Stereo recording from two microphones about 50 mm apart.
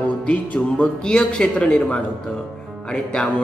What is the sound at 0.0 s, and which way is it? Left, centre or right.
Music, left.